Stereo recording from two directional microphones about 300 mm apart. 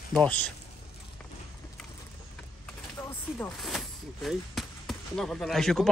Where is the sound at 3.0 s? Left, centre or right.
Centre.